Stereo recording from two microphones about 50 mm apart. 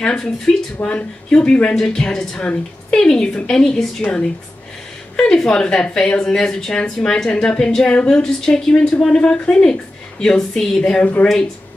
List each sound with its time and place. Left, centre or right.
0.0 s a woman's voice: centre
0.8 s speech: left
1.4 s a woman's voice: left
6.8 s a woman's voice: left
9.1 s a woman's voice: left